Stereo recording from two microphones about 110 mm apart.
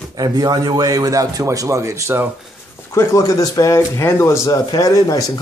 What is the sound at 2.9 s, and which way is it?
Speech, 25° left (ahead or behind).